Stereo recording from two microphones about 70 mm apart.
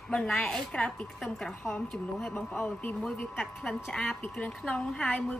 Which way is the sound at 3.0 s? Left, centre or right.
Centre.